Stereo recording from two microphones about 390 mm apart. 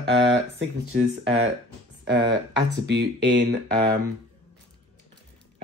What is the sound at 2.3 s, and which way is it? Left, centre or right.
Speech, right.